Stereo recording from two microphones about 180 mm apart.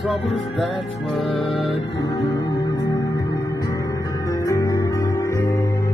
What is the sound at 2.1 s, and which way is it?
Music, 25° left (ahead or behind).